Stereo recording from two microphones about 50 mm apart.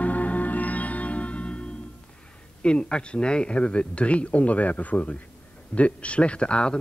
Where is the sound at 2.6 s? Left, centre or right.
Centre.